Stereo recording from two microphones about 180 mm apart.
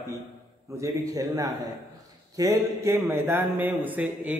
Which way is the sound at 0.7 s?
15° right (ahead or behind).